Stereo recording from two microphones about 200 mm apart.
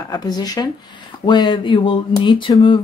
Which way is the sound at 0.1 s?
20° left (ahead or behind).